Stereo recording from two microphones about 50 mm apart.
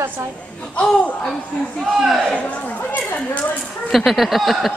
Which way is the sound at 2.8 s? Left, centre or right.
Left.